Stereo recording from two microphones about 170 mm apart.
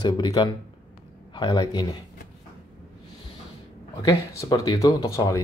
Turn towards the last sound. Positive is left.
turn(degrees=20)  # may be behind; listen again after turning